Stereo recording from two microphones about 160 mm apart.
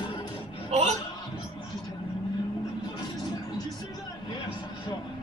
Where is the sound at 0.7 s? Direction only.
45° right (ahead or behind).